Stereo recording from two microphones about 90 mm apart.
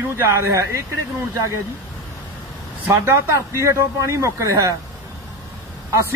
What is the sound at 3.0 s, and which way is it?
Speech, 35° right (ahead or behind).